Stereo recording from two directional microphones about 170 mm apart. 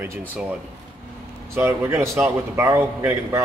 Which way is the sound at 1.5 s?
15° right (ahead or behind).